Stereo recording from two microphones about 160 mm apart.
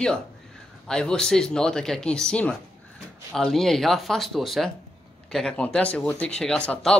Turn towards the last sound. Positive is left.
turn(degrees=5)  # may be behind; listen again after turning